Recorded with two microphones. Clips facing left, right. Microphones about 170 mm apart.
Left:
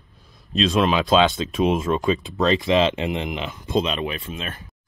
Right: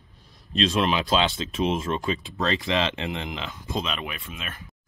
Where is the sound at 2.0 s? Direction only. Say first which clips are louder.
Left 6 dB; 20° left (ahead or behind).